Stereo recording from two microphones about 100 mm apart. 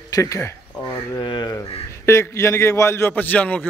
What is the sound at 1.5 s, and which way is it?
A man's voice, 30° left (ahead or behind).